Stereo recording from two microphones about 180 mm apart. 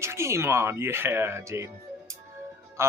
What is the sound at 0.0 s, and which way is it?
Speech, 15° right (ahead or behind).